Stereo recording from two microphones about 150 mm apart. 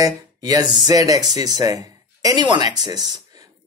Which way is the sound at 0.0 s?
25° right (ahead or behind).